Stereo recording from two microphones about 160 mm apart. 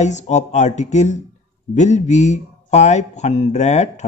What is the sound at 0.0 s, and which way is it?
Speech, 45° left (ahead or behind).